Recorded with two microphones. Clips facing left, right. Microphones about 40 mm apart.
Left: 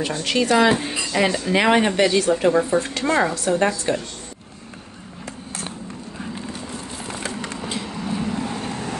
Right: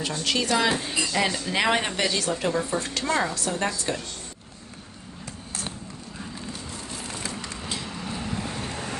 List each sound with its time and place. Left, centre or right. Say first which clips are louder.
0.0 s speech: left 5 dB; left
7.6 s vehicle: left 5 dB; centre